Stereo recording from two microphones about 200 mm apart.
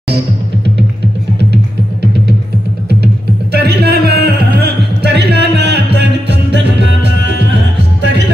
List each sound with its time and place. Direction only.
3.5 s music: 50° right (ahead or behind)